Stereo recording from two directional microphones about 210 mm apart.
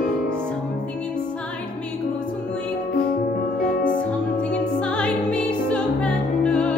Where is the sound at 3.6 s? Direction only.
40° left (ahead or behind).